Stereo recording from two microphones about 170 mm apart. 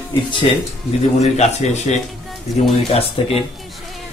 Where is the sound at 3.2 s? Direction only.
35° left (ahead or behind).